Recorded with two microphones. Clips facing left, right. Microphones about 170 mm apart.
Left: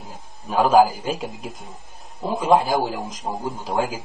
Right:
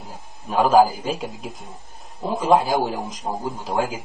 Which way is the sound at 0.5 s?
Centre (ahead or behind).